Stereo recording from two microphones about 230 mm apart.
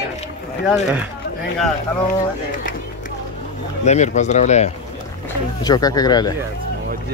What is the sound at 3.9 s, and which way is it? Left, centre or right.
Speech, left.